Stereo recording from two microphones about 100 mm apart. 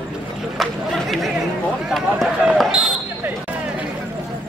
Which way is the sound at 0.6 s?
Centre (ahead or behind).